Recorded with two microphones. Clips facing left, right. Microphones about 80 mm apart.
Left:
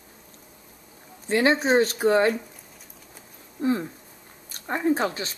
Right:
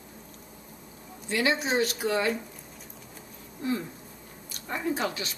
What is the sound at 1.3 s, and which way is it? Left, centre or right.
Speech, left.